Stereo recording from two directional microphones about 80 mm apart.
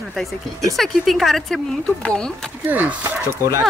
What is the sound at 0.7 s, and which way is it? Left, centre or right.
Speech, centre.